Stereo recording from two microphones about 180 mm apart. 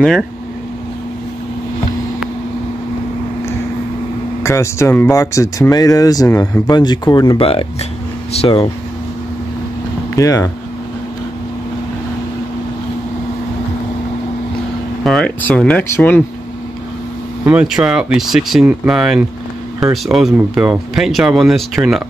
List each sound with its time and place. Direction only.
4.4 s speech: 15° left (ahead or behind); by 8.6 s 30° left (ahead or behind)
10.1 s speech: 20° left (ahead or behind)
15.0 s speech: 5° left (ahead or behind)
17.5 s speech: 5° right (ahead or behind)